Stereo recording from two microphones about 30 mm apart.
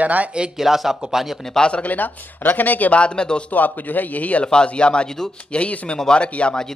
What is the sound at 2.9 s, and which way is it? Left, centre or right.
Speech, left.